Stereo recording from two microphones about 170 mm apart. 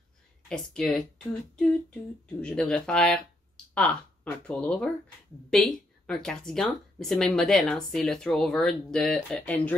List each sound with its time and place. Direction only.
0.5 s speech: 5° left (ahead or behind)